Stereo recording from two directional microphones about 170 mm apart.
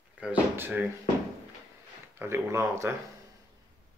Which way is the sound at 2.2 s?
15° right (ahead or behind).